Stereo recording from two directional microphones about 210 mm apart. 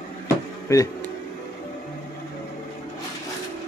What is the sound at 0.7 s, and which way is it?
Speech, 15° left (ahead or behind).